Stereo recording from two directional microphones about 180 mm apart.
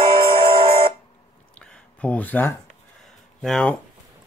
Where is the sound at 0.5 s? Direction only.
30° right (ahead or behind).